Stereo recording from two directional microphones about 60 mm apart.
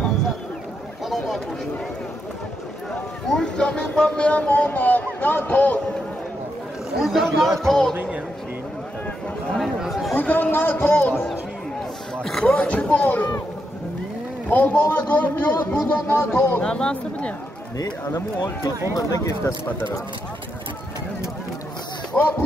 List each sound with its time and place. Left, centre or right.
1.0 s a sound: centre
3.3 s speech: centre; by 5.8 s left
7.0 s speech: centre
9.6 s speech: centre
10.1 s a man's voice: left
12.4 s speech: centre
14.5 s speech: left
16.3 s speech: left
16.6 s speech: centre
18.9 s speech: left
22.2 s speech: centre